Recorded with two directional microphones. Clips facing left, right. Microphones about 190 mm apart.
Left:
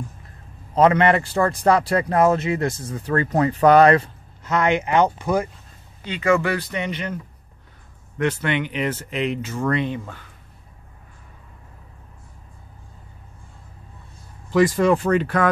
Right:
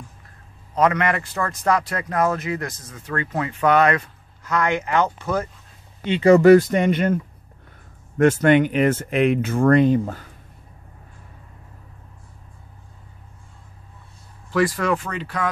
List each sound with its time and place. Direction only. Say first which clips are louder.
0.7 s a man's voice: left 4 dB; 30° left (ahead or behind); by 5.5 s 15° left (ahead or behind)
6.0 s speech: right 8 dB; 30° right (ahead or behind); by 7.2 s 50° right (ahead or behind)
8.2 s speech: right 8 dB; 45° right (ahead or behind)
14.5 s speech: left 4 dB; 25° left (ahead or behind)
15.0 s speech: left 9 dB; 55° left (ahead or behind)